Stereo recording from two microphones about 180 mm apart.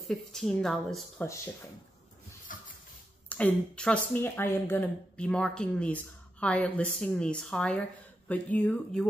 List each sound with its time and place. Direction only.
0.0 s speech: centre (ahead or behind)
1.2 s speech: 15° left (ahead or behind)
2.5 s a sound: 50° left (ahead or behind)
3.3 s speech: 5° left (ahead or behind)